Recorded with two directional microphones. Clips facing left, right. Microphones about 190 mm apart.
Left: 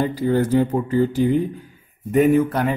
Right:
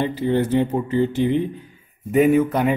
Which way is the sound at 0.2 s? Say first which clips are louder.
Left 1 dB; 40° left (ahead or behind).